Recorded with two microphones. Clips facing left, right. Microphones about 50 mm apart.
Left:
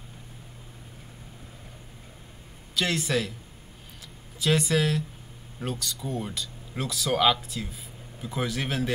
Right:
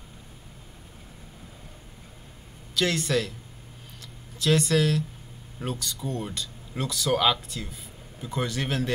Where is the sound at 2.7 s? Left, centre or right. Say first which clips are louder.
Right 1 dB; centre.